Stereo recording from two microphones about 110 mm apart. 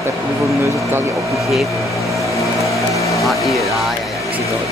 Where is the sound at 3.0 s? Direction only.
30° left (ahead or behind).